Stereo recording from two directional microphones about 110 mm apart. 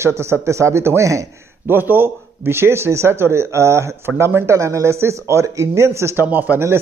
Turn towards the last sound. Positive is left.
turn(degrees=-20)  # may be behind; listen again after turning